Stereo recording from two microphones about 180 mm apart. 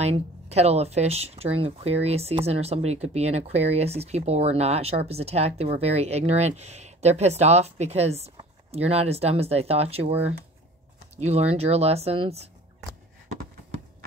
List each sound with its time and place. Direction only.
0.0 s speech: 35° right (ahead or behind)
11.1 s speech: 35° right (ahead or behind)